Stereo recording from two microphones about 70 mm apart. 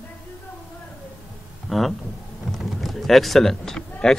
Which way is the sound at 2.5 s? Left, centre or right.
Centre.